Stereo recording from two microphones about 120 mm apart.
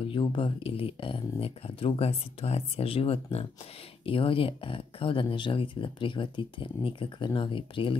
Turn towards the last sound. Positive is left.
turn(degrees=45)  # may be behind; listen again after turning